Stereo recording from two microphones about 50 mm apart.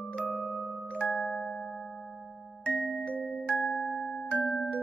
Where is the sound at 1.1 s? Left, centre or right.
Centre.